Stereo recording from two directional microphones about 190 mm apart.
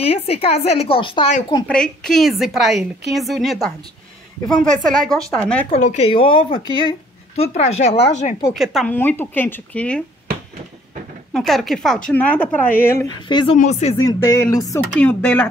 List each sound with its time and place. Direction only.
0.1 s a woman's voice: 30° left (ahead or behind)
1.7 s a woman's voice: 5° left (ahead or behind)
4.6 s a woman's voice: 45° right (ahead or behind)
5.0 s a woman's voice: centre (ahead or behind)
5.7 s a woman's voice: 40° left (ahead or behind)
8.5 s a woman's voice: centre (ahead or behind)
8.9 s speech: 10° left (ahead or behind)
11.3 s a woman's voice: centre (ahead or behind); by 13.6 s 25° left (ahead or behind)
13.6 s a woman's voice: 35° left (ahead or behind)
13.9 s speech: 15° left (ahead or behind)